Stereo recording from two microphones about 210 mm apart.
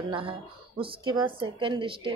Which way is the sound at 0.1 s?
25° right (ahead or behind).